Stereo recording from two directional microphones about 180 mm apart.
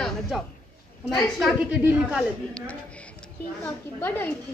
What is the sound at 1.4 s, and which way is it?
Speech, 5° right (ahead or behind).